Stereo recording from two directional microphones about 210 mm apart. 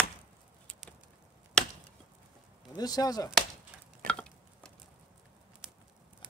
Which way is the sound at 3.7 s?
5° right (ahead or behind).